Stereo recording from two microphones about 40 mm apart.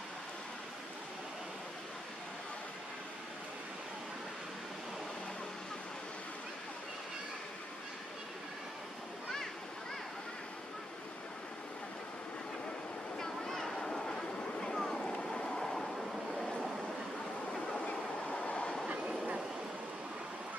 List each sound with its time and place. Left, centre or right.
13.2 s vehicle: centre
15.1 s a sound: left
18.3 s train: left